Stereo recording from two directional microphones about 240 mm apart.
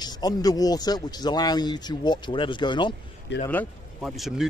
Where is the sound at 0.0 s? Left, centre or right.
Centre.